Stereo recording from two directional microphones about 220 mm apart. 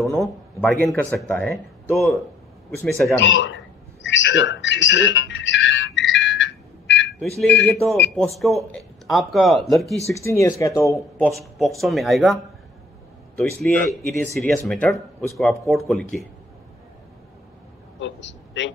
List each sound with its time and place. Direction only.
0.0 s speech: centre (ahead or behind)
3.2 s speech: 55° left (ahead or behind)
4.0 s music: 55° left (ahead or behind)
7.2 s speech: 5° left (ahead or behind)
10.0 s speech: 10° left (ahead or behind)
13.4 s speech: 5° left (ahead or behind)
18.0 s a man's voice: 55° left (ahead or behind)